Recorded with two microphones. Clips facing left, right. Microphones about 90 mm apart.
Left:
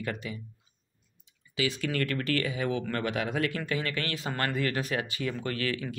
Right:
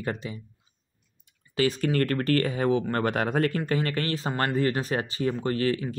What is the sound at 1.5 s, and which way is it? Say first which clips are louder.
Speech: right 6 dB; 40° right (ahead or behind).